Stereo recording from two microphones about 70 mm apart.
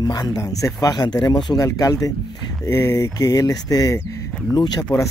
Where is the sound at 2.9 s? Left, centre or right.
Left.